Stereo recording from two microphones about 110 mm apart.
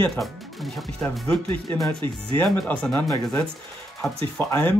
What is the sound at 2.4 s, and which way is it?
Speech, 10° left (ahead or behind).